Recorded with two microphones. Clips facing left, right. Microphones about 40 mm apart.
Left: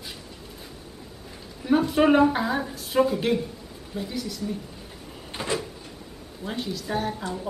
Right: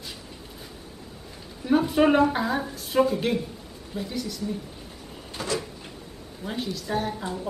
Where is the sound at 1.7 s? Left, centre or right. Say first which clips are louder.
Left 1 dB; centre.